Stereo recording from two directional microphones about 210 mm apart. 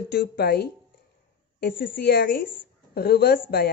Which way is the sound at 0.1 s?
50° left (ahead or behind).